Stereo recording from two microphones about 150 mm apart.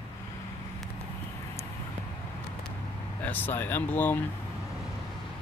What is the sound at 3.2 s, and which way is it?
Speech, 10° left (ahead or behind).